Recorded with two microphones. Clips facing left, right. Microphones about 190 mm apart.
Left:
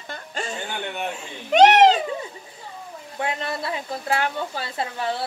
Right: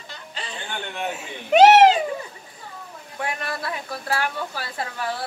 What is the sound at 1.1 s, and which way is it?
Speech, 5° right (ahead or behind).